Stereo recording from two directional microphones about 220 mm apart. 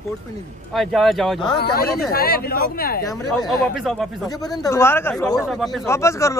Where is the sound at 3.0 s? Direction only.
15° left (ahead or behind).